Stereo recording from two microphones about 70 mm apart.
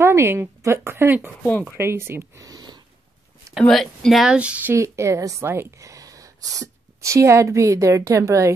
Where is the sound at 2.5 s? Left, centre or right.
Right.